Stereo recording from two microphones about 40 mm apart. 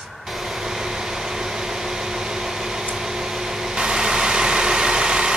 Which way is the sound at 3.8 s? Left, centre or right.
Centre.